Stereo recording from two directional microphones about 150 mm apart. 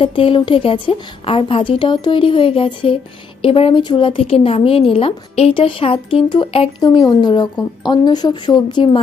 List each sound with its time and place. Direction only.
0.0 s a woman's voice: 35° left (ahead or behind)